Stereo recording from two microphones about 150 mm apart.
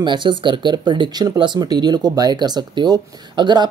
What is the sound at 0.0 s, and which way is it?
Speech, 30° right (ahead or behind).